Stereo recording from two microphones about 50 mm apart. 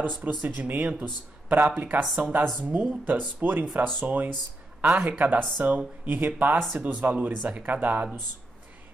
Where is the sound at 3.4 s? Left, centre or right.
Right.